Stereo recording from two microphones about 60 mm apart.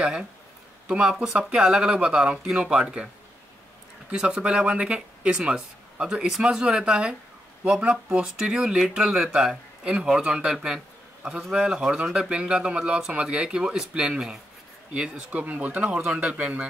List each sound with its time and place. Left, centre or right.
0.0 s speech: centre
4.1 s speech: centre